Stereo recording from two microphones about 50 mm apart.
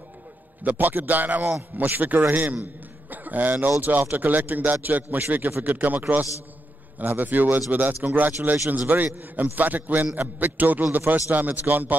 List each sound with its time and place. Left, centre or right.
0.7 s a man's voice: right